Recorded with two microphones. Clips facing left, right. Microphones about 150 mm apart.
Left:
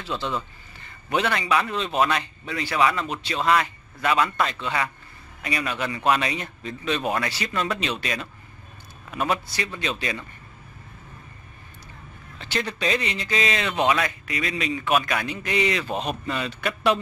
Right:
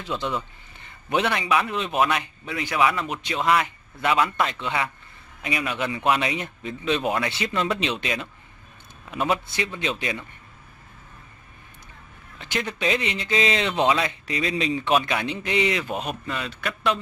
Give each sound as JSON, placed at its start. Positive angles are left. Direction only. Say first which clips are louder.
{"t": 0.0, "sound": "a man's voice", "louder": "right 1 dB", "side_deg": -15}
{"t": 12.4, "sound": "speech", "louder": "even", "side_deg": -15}